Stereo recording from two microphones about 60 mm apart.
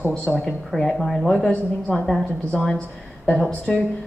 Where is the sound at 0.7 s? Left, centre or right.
Centre.